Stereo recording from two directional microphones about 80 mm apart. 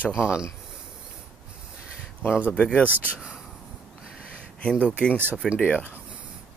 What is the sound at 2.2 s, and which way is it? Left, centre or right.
Speech, left.